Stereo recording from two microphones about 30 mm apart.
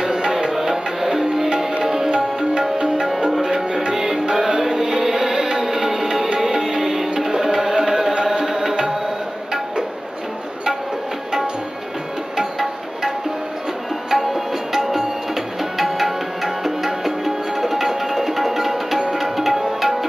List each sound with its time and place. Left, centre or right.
0.0 s music: centre
3.3 s music: centre
12.4 s music: centre
14.1 s tabla: centre
15.8 s music: centre